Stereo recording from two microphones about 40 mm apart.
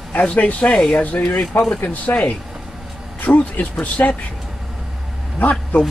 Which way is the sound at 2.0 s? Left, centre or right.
Left.